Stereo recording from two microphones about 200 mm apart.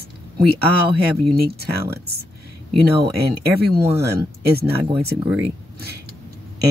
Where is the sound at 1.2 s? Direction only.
55° right (ahead or behind).